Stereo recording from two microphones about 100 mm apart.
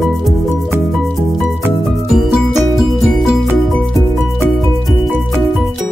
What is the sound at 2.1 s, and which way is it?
Music, centre (ahead or behind).